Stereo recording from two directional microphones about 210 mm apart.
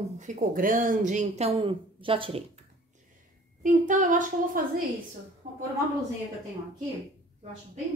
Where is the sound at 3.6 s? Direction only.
40° right (ahead or behind).